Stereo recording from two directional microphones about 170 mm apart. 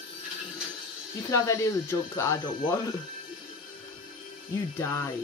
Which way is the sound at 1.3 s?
20° left (ahead or behind).